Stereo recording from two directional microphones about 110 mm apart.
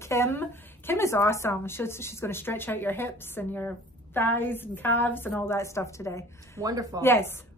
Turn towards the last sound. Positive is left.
turn(degrees=20)  # may be behind; listen again after turning